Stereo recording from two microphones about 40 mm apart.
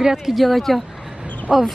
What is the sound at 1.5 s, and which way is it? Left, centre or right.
Speech, right.